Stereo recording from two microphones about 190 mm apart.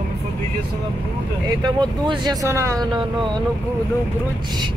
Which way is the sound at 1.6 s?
25° right (ahead or behind).